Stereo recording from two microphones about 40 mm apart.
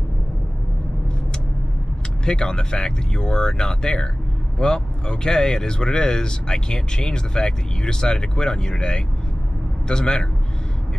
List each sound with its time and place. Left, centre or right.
2.2 s a man's voice: centre